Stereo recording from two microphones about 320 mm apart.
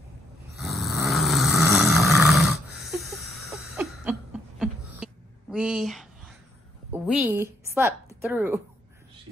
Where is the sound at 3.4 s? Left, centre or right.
Centre.